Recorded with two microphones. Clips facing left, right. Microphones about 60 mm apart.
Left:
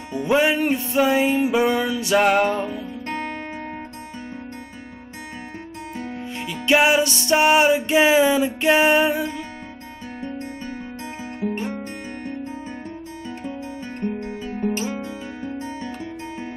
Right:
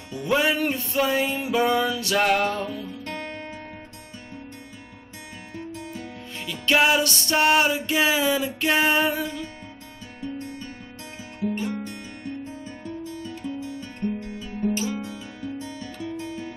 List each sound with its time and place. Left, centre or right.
0.1 s music: left
6.3 s music: left
11.5 s guitar: left
14.0 s guitar: left